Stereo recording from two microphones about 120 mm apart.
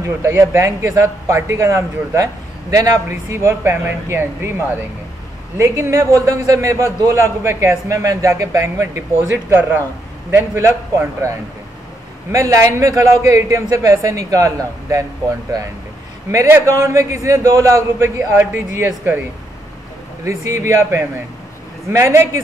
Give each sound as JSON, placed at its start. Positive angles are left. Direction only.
{"t": 0.0, "sound": "a man's voice", "side_deg": -25}
{"t": 5.6, "sound": "a man's voice", "side_deg": -25}
{"t": 16.3, "sound": "a man's voice", "side_deg": -20}
{"t": 20.2, "sound": "a man's voice", "side_deg": -25}